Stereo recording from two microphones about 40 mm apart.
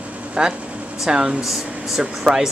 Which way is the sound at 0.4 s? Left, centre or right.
Right.